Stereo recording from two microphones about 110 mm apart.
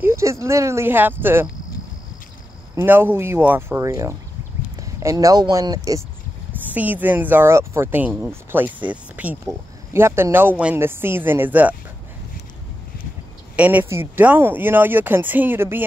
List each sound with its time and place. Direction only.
0.0 s speech: 25° right (ahead or behind)
2.7 s speech: 20° right (ahead or behind)
6.7 s speech: 15° right (ahead or behind)
13.6 s speech: 15° right (ahead or behind)